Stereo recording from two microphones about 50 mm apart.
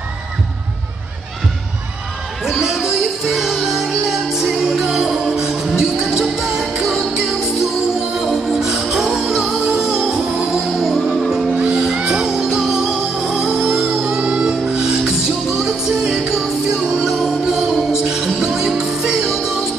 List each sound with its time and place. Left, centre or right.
2.4 s music: centre
8.2 s music: centre
11.5 s music: centre
14.0 s music: centre